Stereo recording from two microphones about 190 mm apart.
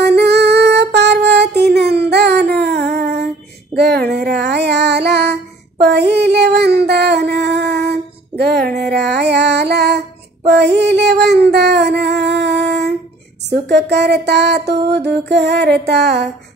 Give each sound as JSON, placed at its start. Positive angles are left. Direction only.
{"t": 0.0, "sound": "female singing", "side_deg": -60}
{"t": 12.0, "sound": "music", "side_deg": -60}
{"t": 13.5, "sound": "a sound", "side_deg": -60}